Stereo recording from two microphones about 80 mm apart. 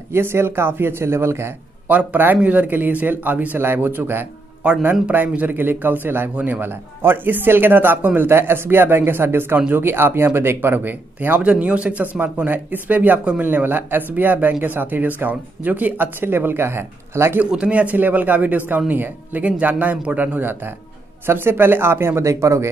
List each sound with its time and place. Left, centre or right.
0.1 s speech: right
1.9 s speech: right
4.6 s a man's voice: centre; by 17.4 s right
17.4 s speech: centre; by 22.7 s right